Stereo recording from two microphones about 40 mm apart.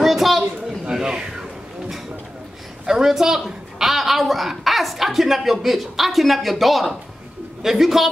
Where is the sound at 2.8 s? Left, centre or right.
Centre.